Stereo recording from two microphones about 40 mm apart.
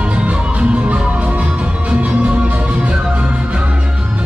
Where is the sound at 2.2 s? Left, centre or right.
Right.